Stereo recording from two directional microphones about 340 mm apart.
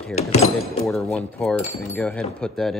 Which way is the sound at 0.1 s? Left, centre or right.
Centre.